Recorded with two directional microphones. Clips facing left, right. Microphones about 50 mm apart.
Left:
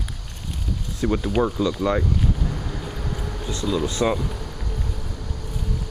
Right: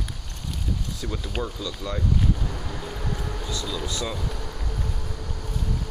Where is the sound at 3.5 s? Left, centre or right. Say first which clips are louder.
Left 9 dB; left.